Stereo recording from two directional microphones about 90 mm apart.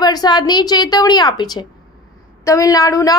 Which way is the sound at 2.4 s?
40° left (ahead or behind).